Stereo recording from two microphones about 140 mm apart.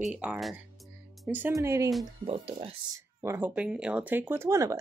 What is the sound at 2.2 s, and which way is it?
Speech, 45° right (ahead or behind).